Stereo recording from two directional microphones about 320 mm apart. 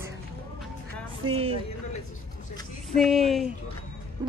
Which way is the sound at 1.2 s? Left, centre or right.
Centre.